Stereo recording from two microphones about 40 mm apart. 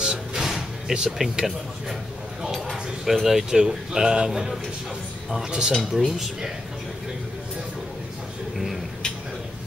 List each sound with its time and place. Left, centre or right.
0.0 s music: centre
2.7 s a sound: centre
3.5 s speech: right
5.7 s speech: centre